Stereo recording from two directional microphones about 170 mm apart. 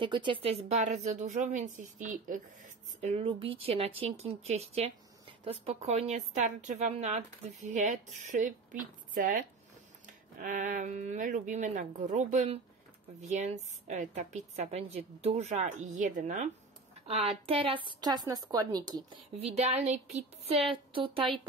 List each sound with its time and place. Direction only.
0.0 s a woman's voice: 30° right (ahead or behind); by 12.5 s 45° right (ahead or behind)
13.8 s a woman's voice: 45° right (ahead or behind)
17.1 s a woman's voice: 35° right (ahead or behind)
19.3 s a woman's voice: 40° right (ahead or behind)